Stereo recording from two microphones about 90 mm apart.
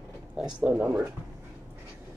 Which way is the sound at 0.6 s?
15° right (ahead or behind).